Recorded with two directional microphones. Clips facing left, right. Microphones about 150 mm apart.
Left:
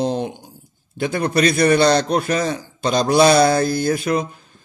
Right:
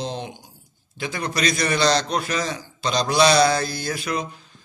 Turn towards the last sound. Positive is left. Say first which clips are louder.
# left 7 dB
turn(degrees=50)  # may be behind; listen again after turning